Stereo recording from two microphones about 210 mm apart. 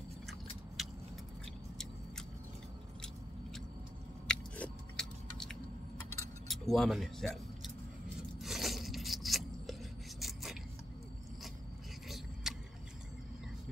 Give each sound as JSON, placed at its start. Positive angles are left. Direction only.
{"t": 4.3, "sound": "biting", "side_deg": 5}
{"t": 6.4, "sound": "speech", "side_deg": 0}
{"t": 8.4, "sound": "scissors", "side_deg": 0}
{"t": 10.2, "sound": "a sound", "side_deg": 0}
{"t": 12.4, "sound": "vehicle", "side_deg": 0}